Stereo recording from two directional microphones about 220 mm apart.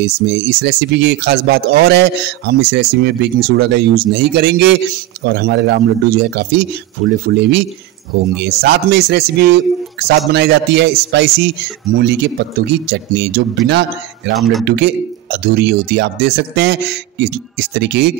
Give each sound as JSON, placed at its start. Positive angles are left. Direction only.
{"t": 0.0, "sound": "speech", "side_deg": -50}
{"t": 14.3, "sound": "speech", "side_deg": 0}
{"t": 14.8, "sound": "speech", "side_deg": -45}